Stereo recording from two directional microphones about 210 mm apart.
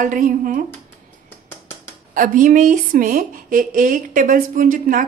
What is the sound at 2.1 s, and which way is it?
A woman's voice, 40° right (ahead or behind).